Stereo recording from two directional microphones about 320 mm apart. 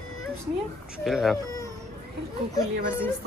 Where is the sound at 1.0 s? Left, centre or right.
Centre.